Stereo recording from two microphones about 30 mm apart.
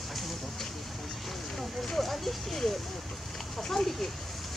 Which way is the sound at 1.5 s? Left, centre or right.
Centre.